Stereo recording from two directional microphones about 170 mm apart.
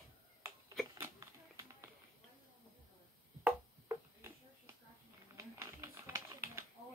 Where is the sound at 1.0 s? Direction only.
15° right (ahead or behind).